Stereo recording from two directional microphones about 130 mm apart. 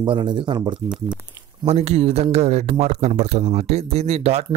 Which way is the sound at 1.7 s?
50° right (ahead or behind).